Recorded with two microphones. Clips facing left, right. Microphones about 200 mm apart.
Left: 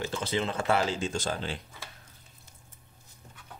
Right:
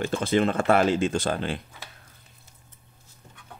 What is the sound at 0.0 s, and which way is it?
Speech, 50° right (ahead or behind).